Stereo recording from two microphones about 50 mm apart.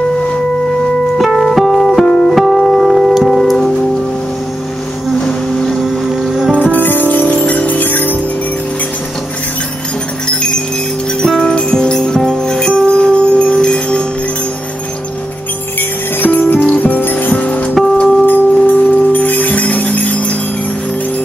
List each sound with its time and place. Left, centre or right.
1.1 s music: centre
2.4 s music: centre
6.2 s music: centre
6.6 s music: left
10.2 s music: centre
12.3 s jingle bell: centre
16.2 s music: left